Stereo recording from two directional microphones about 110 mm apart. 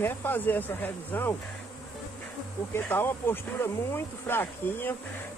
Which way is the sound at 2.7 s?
20° left (ahead or behind).